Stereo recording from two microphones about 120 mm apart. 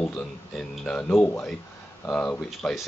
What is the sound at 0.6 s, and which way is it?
Speech, 10° left (ahead or behind).